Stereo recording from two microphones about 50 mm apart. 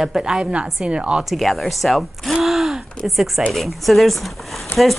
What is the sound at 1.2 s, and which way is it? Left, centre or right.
A woman's voice, centre.